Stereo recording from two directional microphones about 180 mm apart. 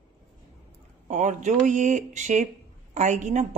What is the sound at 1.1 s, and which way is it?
A woman's voice, 40° right (ahead or behind).